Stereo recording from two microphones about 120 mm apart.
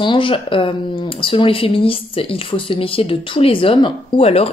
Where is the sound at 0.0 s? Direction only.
45° left (ahead or behind).